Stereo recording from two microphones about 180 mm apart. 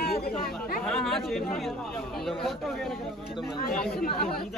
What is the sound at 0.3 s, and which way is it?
Speech, 5° left (ahead or behind).